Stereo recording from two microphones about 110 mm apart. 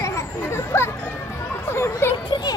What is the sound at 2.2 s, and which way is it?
Speech, 45° left (ahead or behind).